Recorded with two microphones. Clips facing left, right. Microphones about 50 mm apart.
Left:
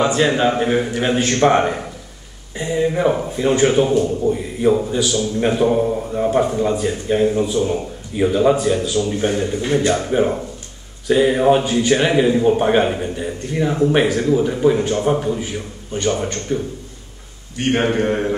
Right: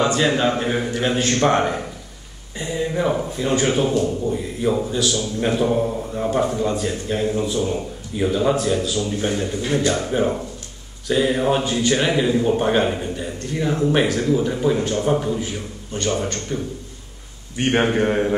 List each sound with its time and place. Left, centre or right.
0.0 s a man's voice: centre
4.7 s a man's voice: centre
17.6 s a man's voice: centre